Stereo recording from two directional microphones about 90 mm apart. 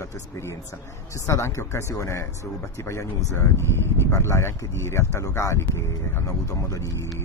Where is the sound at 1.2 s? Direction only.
30° left (ahead or behind).